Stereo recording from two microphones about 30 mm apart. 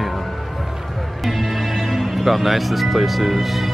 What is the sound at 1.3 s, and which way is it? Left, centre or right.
Music, centre.